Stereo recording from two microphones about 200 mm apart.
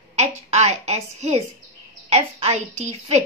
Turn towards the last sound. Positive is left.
turn(degrees=-35)  # may be behind; listen again after turning